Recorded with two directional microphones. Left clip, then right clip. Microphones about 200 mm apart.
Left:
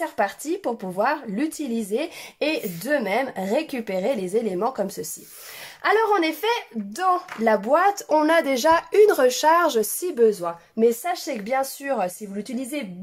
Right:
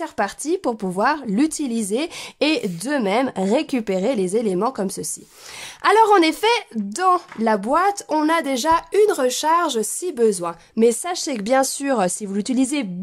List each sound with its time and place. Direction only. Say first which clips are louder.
0.0 s a woman's voice: right 1 dB; 40° right (ahead or behind); by 10.1 s 15° right (ahead or behind)
10.1 s speech: even; 35° right (ahead or behind); by 12.8 s 65° right (ahead or behind)